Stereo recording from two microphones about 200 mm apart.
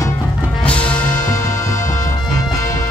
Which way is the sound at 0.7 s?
5° left (ahead or behind).